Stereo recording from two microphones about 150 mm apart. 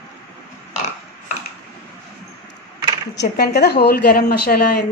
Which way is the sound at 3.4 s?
90° left.